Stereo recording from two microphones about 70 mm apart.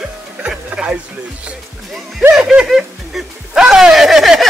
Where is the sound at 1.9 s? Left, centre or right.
Centre.